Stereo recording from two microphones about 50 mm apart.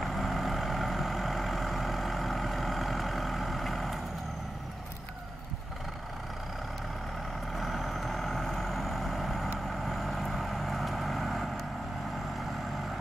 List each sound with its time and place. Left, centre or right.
0.0 s vehicle: centre
7.5 s vehicle: centre